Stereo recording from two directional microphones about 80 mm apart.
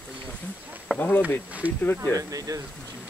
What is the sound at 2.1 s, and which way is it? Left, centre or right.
Speech, right.